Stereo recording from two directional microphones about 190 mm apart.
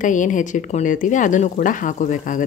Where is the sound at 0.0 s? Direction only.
40° left (ahead or behind).